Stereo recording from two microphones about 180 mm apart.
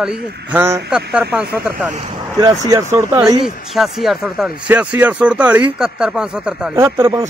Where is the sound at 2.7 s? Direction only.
15° right (ahead or behind).